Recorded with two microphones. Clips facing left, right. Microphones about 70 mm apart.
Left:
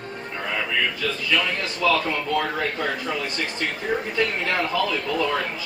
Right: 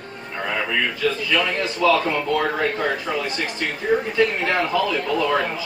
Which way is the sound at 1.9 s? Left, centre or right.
Centre.